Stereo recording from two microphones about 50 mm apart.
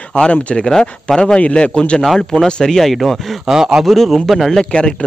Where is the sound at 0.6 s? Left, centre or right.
Centre.